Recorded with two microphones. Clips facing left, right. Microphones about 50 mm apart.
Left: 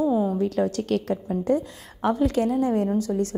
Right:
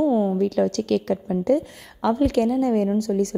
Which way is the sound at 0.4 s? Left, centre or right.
Right.